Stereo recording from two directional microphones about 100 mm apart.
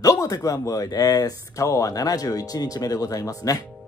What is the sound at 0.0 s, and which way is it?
Speech, 35° left (ahead or behind).